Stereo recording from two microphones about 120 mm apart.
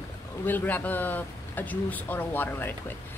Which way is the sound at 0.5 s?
15° left (ahead or behind).